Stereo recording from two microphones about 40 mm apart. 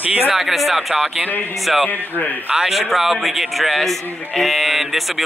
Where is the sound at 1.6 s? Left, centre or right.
Centre.